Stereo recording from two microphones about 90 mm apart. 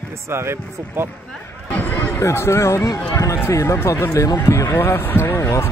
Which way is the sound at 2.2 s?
30° left (ahead or behind).